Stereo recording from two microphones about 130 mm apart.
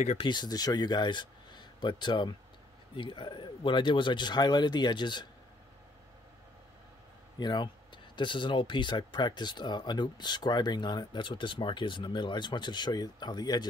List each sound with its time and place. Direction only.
0.2 s speech: 35° left (ahead or behind)
7.3 s speech: 35° left (ahead or behind)